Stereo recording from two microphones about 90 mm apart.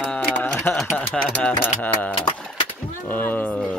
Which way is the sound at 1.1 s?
10° left (ahead or behind).